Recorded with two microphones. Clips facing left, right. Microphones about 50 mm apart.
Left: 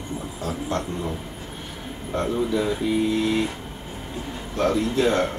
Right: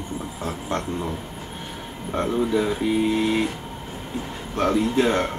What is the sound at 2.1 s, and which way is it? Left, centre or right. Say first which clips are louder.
Speech: right 1 dB; centre.